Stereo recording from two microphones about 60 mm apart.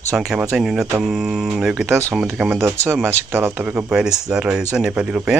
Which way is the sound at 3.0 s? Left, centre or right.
Right.